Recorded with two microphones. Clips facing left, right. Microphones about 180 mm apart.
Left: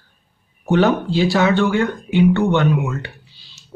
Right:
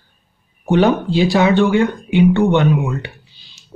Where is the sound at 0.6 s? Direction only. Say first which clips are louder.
Right 2 dB; 15° right (ahead or behind).